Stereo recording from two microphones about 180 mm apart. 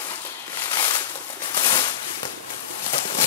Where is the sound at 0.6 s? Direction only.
25° left (ahead or behind).